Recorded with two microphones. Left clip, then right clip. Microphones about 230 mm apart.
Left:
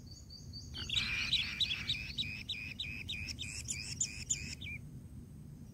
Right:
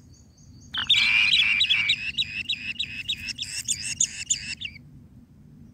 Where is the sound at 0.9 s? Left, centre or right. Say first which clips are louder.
Right 14 dB; centre.